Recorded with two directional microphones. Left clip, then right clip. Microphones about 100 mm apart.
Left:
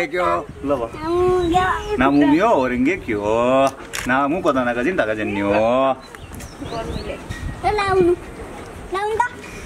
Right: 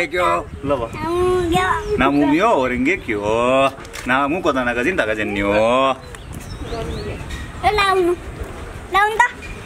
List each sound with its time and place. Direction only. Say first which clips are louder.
0.0 s speech: right 2 dB; centre (ahead or behind)
7.6 s speech: right 3 dB; 30° right (ahead or behind)
8.9 s a woman's voice: right 5 dB; 40° right (ahead or behind)